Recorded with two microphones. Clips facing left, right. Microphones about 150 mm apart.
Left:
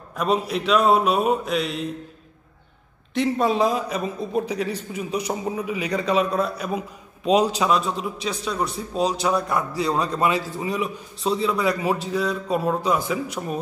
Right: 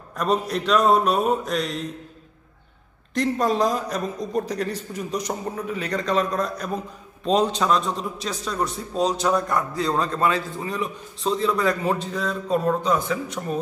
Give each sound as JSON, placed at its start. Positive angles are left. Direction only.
{"t": 0.1, "sound": "a man's voice", "side_deg": 0}
{"t": 3.2, "sound": "a man's voice", "side_deg": 0}